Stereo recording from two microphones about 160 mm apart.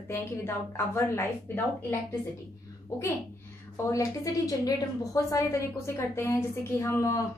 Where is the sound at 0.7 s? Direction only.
15° left (ahead or behind).